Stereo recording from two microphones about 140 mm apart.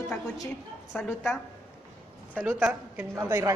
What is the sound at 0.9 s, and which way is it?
Speech, 10° left (ahead or behind).